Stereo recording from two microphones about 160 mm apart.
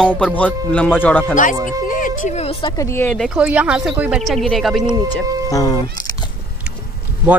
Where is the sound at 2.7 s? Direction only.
15° left (ahead or behind).